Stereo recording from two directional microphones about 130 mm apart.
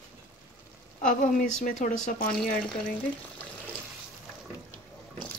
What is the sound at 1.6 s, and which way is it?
Speech, 90° left.